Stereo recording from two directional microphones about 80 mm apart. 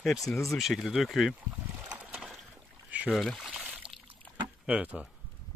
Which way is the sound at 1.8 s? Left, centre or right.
Centre.